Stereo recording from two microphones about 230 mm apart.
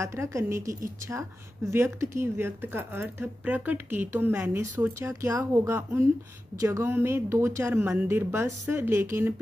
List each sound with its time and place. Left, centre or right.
0.0 s a woman's voice: centre